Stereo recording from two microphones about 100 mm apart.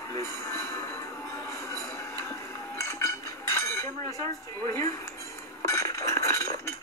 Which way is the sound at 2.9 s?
25° left (ahead or behind).